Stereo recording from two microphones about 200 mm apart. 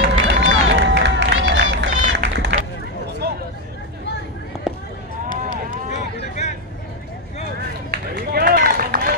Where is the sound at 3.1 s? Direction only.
55° right (ahead or behind).